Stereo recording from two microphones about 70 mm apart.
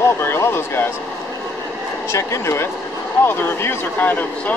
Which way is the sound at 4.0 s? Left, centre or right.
Left.